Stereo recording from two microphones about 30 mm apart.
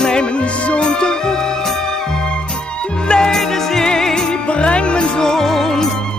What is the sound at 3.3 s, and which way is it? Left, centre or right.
Music, centre.